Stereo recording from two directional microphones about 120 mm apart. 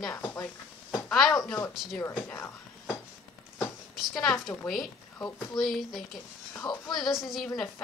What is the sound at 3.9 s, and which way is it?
A woman's voice, centre (ahead or behind).